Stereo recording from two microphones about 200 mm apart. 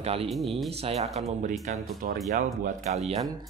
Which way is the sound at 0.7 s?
30° right (ahead or behind).